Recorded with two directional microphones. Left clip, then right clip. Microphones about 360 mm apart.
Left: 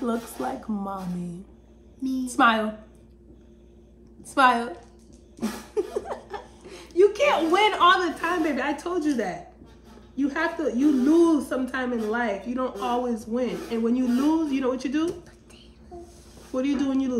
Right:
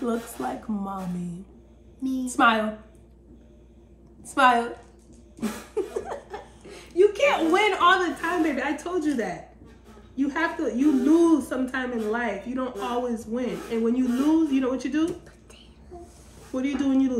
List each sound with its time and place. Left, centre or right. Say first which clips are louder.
0.0 s a woman's voice: even; centre
2.2 s a woman's voice: even; centre
4.2 s a woman's voice: even; centre
5.9 s a woman's voice: left 1 dB; centre
16.5 s speech: even; centre